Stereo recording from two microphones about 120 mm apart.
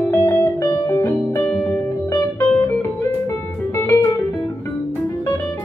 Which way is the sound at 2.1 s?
20° left (ahead or behind).